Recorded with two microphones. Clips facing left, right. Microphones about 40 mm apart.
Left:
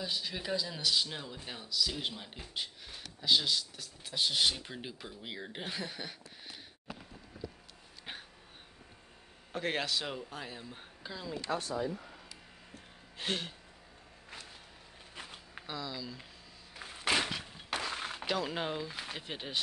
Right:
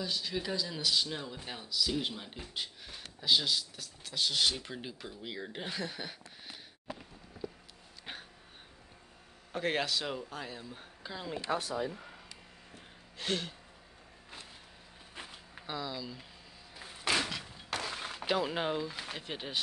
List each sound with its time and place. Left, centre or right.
0.0 s speech: centre
4.0 s speech: centre
8.0 s a sound: centre
9.5 s speech: centre
11.5 s speech: right
13.2 s a sound: centre
15.6 s speech: centre
16.8 s a sound: centre
18.2 s speech: centre